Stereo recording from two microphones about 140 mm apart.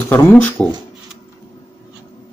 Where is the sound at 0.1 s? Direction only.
15° left (ahead or behind).